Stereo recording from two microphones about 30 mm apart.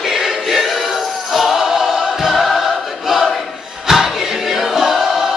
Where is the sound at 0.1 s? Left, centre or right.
Centre.